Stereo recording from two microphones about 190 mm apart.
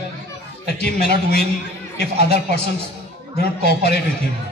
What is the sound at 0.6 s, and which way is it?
Speech, 55° left (ahead or behind).